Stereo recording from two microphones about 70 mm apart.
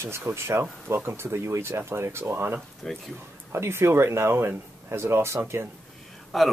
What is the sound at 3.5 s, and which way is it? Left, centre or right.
Speech, right.